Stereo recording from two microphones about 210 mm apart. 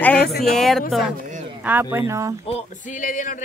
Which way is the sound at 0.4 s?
Centre (ahead or behind).